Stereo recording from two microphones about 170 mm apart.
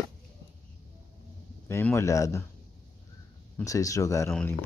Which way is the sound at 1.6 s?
15° left (ahead or behind).